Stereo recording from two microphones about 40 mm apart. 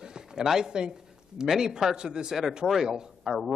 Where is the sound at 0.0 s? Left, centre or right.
Centre.